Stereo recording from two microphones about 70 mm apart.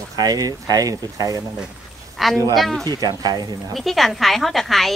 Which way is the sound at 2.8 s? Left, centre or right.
Right.